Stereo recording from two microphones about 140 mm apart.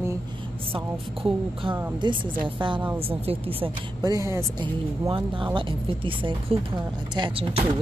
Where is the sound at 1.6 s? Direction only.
35° right (ahead or behind).